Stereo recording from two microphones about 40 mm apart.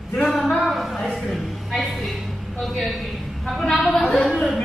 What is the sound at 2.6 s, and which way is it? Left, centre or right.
Speech, centre.